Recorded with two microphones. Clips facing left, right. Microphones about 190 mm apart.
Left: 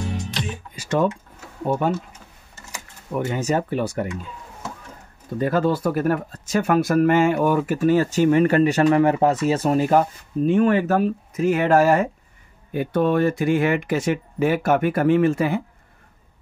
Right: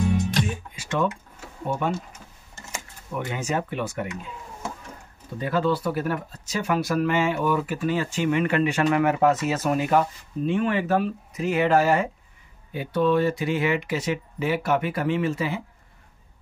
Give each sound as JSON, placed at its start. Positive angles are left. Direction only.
{"t": 0.1, "sound": "music", "side_deg": -50}
{"t": 0.7, "sound": "a sound", "side_deg": 40}
{"t": 3.3, "sound": "speech", "side_deg": 40}
{"t": 5.4, "sound": "speech", "side_deg": 45}